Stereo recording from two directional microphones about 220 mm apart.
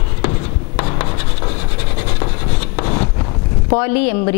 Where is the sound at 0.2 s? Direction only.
15° left (ahead or behind).